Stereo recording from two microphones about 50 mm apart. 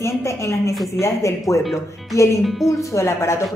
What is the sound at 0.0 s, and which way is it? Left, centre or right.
Speech, left.